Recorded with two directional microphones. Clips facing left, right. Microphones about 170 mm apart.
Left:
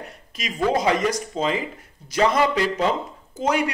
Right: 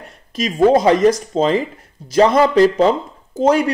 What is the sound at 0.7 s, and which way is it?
Speech, 35° right (ahead or behind).